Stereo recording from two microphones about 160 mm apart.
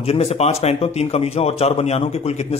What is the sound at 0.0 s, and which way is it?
A man's voice, 40° left (ahead or behind).